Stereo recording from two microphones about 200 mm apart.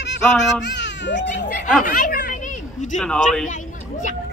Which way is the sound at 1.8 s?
40° left (ahead or behind).